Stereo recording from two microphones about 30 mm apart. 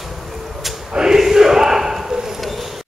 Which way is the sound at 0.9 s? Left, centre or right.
Centre.